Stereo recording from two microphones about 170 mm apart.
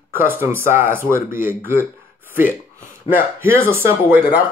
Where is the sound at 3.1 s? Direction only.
15° right (ahead or behind).